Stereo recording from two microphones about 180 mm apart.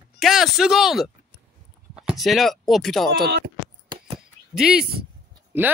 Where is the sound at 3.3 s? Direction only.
55° right (ahead or behind).